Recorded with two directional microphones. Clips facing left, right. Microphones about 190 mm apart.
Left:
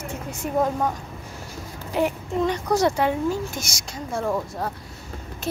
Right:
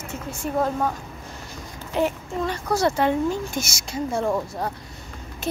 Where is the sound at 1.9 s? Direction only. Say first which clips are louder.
Left 1 dB; 15° left (ahead or behind).